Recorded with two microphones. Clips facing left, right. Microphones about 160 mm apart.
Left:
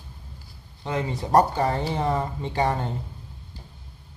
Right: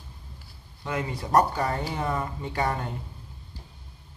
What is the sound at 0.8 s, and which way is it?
Speech, 25° left (ahead or behind).